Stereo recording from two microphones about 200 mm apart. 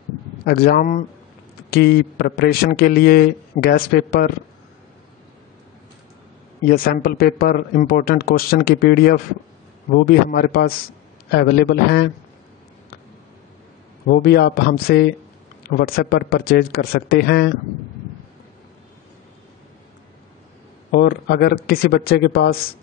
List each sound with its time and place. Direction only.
0.5 s a man's voice: 50° left (ahead or behind)
7.0 s a man's voice: 45° left (ahead or behind)
14.0 s a man's voice: 55° left (ahead or behind)
20.9 s a man's voice: 50° left (ahead or behind)